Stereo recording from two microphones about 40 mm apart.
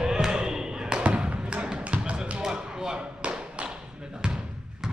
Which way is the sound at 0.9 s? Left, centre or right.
Right.